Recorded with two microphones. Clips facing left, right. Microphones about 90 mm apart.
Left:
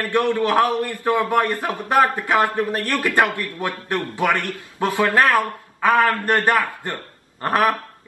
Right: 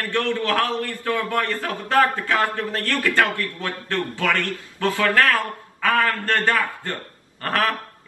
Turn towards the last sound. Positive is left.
turn(degrees=20)  # may be behind; listen again after turning